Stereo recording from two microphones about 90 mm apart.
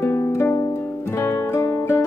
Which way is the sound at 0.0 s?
25° left (ahead or behind).